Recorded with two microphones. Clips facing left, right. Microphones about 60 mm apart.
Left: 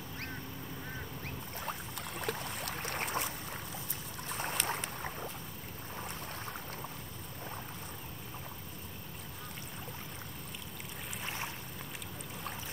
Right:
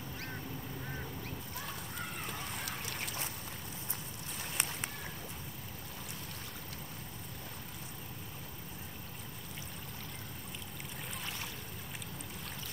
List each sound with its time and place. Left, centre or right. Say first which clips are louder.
1.2 s boat: left 3 dB; left
2.0 s boat: left 2 dB; left
2.8 s boat: left 5 dB; left
5.9 s a sound: left 7 dB; left
11.2 s stream: left 6 dB; left